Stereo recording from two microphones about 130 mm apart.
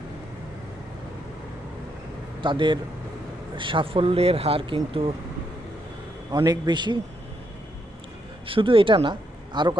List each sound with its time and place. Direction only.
2.4 s a man's voice: 40° right (ahead or behind)
6.3 s a man's voice: 30° right (ahead or behind)
8.5 s speech: 40° right (ahead or behind)